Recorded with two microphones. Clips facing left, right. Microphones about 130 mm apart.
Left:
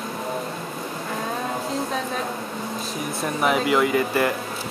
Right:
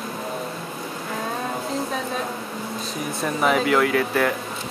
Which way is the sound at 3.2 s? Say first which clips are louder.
Right 1 dB; centre (ahead or behind).